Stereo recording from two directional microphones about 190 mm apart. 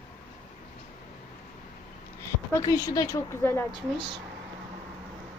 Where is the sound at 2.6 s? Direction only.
20° left (ahead or behind).